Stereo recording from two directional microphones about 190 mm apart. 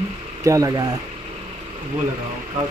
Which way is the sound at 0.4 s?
15° right (ahead or behind).